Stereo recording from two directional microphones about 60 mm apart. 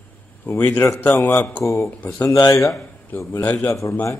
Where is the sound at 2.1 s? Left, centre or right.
Left.